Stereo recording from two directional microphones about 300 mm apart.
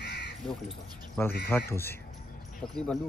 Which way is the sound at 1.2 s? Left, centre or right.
Centre.